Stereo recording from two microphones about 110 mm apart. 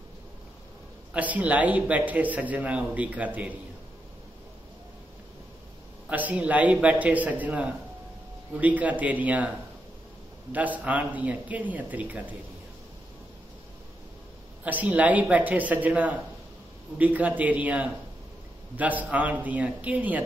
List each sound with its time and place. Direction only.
1.1 s a man's voice: 15° right (ahead or behind)
6.0 s a man's voice: 15° right (ahead or behind)
10.5 s a man's voice: 15° right (ahead or behind)
14.6 s a man's voice: 15° right (ahead or behind)